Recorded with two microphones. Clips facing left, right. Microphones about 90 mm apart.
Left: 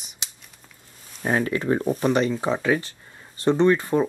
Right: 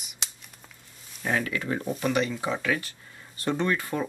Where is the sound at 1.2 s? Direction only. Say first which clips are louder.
Left 5 dB; 35° left (ahead or behind).